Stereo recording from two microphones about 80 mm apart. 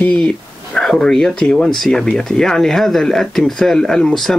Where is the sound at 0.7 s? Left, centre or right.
Centre.